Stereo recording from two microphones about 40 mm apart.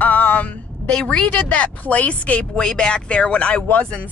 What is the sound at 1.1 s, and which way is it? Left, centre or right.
Speech, left.